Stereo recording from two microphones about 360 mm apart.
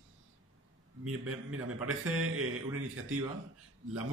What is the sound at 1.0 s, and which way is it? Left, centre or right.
Speech, right.